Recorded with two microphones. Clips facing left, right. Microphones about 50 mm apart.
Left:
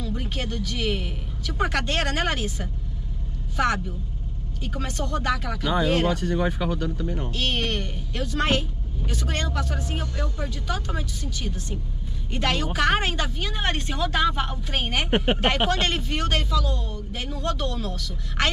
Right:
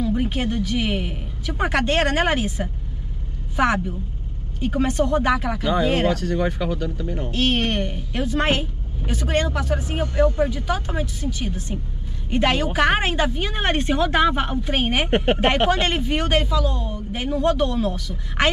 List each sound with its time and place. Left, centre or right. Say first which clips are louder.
0.0 s speech: right 8 dB; centre
6.1 s speech: right 2 dB; centre
6.4 s speech: right 2 dB; centre
7.2 s speech: right 8 dB; centre
15.0 s speech: right 1 dB; centre
15.3 s speech: right 4 dB; centre